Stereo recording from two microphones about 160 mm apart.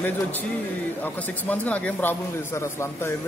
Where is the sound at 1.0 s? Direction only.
10° left (ahead or behind).